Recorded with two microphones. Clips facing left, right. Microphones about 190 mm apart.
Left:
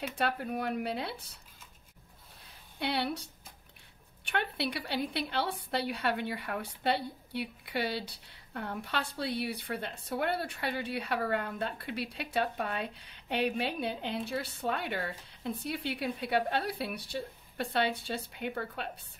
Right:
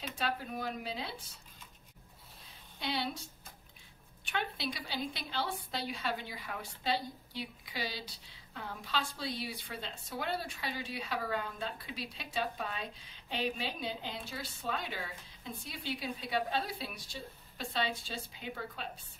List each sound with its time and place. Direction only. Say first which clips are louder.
0.2 s a woman's voice: left 4 dB; 60° left (ahead or behind)
2.8 s a woman's voice: left 4 dB; 65° left (ahead or behind)
4.3 s a woman's voice: left 4 dB; 65° left (ahead or behind)